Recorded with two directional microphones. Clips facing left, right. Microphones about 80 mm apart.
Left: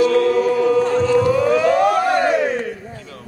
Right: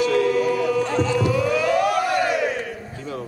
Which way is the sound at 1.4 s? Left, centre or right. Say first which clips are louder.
Left 5 dB; left.